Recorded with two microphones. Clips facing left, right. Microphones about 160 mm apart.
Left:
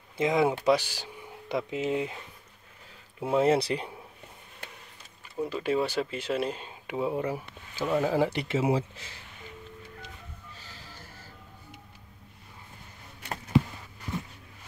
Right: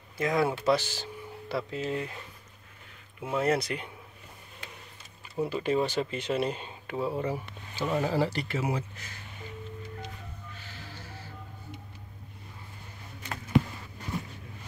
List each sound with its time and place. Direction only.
0.2 s speech: 20° left (ahead or behind)
3.2 s speech: 25° left (ahead or behind)
5.3 s speech: centre (ahead or behind)
6.9 s speech: 15° left (ahead or behind)
8.4 s speech: 25° left (ahead or behind)